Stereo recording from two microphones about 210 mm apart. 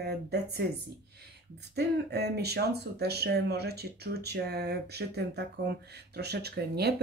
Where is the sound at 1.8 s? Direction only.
50° right (ahead or behind).